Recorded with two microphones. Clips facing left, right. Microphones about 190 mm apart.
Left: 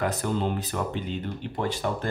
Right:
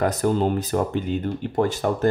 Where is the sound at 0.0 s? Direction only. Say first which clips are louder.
Right 6 dB; 40° right (ahead or behind).